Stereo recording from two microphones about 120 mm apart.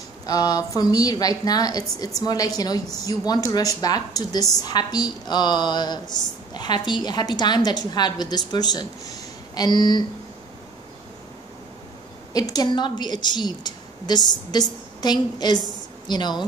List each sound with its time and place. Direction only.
0.3 s a woman's voice: 30° left (ahead or behind)
12.3 s a woman's voice: 30° left (ahead or behind)